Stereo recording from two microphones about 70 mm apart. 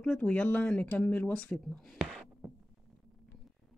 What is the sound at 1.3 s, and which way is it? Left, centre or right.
Speech, centre.